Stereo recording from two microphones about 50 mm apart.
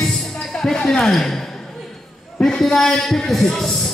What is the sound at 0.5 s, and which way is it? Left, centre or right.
Speech, centre.